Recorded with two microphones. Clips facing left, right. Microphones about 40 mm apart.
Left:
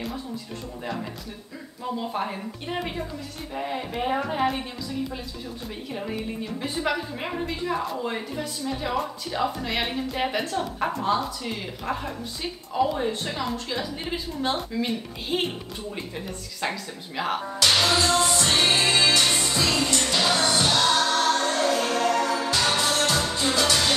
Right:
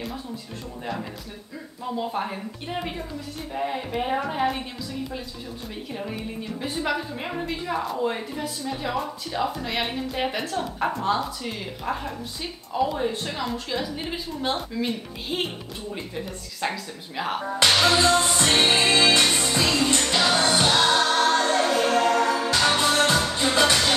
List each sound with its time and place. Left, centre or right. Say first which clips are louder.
1.9 s a woman's voice: right 1 dB; centre
5.9 s a woman's voice: left 2 dB; centre
16.6 s a woman's voice: right 1 dB; centre
17.8 s music: right 2 dB; right